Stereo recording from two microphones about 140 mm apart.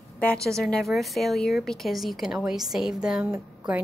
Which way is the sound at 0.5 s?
Centre (ahead or behind).